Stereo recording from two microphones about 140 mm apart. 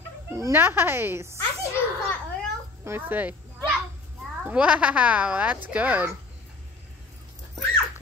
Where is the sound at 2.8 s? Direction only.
15° right (ahead or behind).